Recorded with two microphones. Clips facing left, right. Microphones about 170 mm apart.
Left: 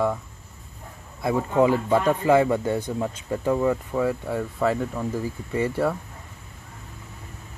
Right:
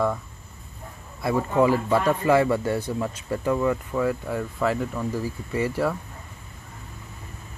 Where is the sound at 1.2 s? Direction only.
20° left (ahead or behind).